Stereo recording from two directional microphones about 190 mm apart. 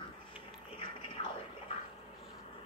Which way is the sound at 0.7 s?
25° left (ahead or behind).